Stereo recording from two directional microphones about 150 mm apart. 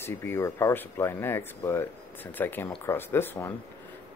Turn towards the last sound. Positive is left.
turn(degrees=15)  # may be behind; listen again after turning